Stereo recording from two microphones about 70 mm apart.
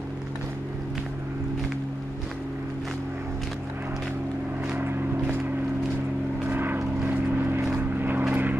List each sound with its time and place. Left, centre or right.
6.4 s vehicle: right